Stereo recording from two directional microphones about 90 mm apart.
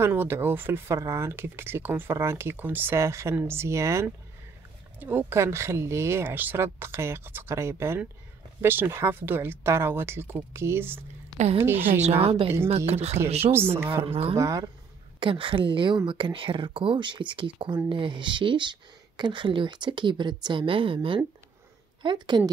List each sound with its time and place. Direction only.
0.0 s speech: 25° right (ahead or behind)
5.0 s speech: 20° right (ahead or behind)
5.4 s speech: 30° right (ahead or behind)
12.2 s a woman's voice: 90° right
13.2 s speech: 25° right (ahead or behind)
14.0 s a woman's voice: 90° right
14.3 s speech: 35° right (ahead or behind)
15.1 s a woman's voice: 70° right (ahead or behind)
22.0 s speech: 60° right (ahead or behind)